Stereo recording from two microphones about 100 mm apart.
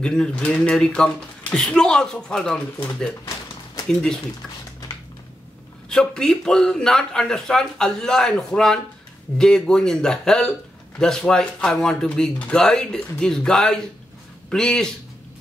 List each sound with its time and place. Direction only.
0.0 s speech: 10° left (ahead or behind)
5.9 s speech: 5° left (ahead or behind)